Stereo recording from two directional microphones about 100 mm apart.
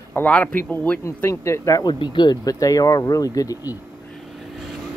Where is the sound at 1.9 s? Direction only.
50° left (ahead or behind).